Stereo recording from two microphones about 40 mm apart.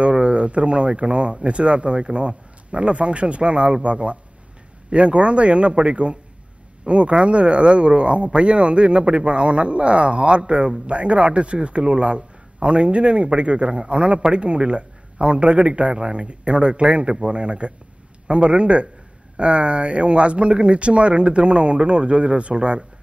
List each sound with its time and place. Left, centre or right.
0.1 s speech: right